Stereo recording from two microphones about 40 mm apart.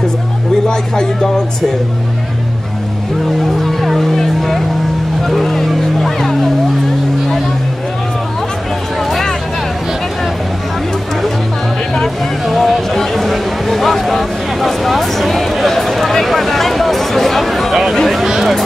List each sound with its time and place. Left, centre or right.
0.7 s speech: centre
3.6 s music: centre
4.4 s vehicle: centre
5.2 s music: centre
12.4 s music: centre
18.2 s a sound: centre